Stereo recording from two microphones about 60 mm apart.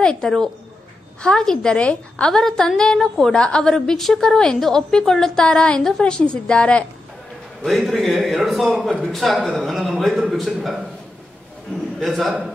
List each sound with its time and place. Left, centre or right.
0.0 s a woman's voice: centre
2.3 s a woman's voice: centre
7.6 s a man's voice: centre
12.0 s a man's voice: centre